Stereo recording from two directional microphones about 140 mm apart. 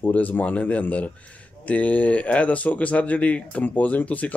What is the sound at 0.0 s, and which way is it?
Speech, 10° left (ahead or behind).